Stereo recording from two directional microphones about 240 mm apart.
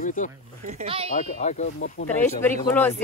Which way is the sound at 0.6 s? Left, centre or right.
Right.